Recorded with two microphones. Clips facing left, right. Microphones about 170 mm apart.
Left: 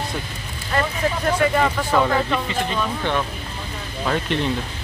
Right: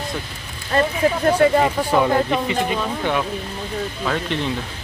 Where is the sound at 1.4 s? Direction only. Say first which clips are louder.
Right 3 dB; 30° right (ahead or behind).